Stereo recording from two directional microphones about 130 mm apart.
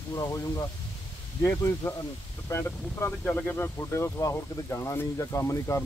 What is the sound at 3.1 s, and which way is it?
Speech, 15° left (ahead or behind).